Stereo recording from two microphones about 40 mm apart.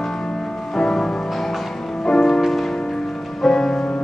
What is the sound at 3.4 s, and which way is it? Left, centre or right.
Music, centre.